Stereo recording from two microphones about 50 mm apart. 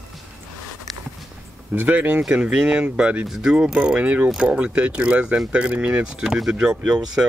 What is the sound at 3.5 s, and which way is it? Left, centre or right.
Speech, centre.